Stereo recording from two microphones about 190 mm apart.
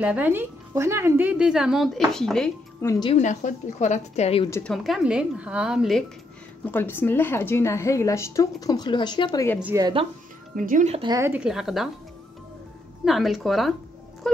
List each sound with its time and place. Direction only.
0.0 s speech: 10° right (ahead or behind)
2.8 s a woman's voice: 15° left (ahead or behind)
3.1 s a woman's voice: 40° left (ahead or behind)
4.6 s speech: centre (ahead or behind)
6.6 s a woman's voice: 10° left (ahead or behind)
9.6 s speech: 10° right (ahead or behind)
10.5 s speech: 45° right (ahead or behind)
11.0 s speech: 20° right (ahead or behind); by 11.9 s centre (ahead or behind)
13.0 s speech: centre (ahead or behind)